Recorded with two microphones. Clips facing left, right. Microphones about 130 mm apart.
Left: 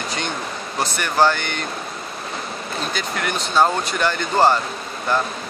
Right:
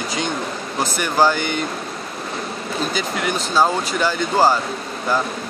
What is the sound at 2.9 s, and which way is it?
Speech, 5° right (ahead or behind).